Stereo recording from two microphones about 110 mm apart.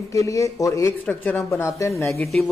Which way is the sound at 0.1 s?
30° left (ahead or behind).